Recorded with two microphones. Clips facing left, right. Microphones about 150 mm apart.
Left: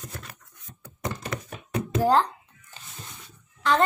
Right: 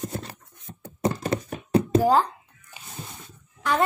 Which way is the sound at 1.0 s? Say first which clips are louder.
Right 7 dB; 30° right (ahead or behind).